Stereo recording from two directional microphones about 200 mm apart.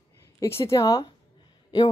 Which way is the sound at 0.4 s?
15° left (ahead or behind).